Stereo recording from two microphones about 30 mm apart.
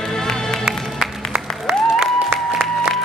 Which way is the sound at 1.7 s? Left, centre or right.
Right.